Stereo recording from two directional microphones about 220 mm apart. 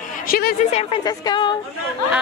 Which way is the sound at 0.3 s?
45° left (ahead or behind).